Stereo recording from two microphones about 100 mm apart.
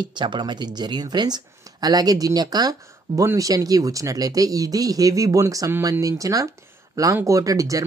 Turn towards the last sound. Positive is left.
turn(degrees=-35)  # may be behind; listen again after turning